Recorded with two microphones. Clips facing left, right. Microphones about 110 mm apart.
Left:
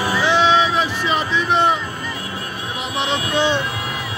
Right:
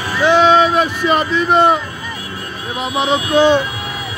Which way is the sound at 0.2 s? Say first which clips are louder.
Right 6 dB; 50° right (ahead or behind).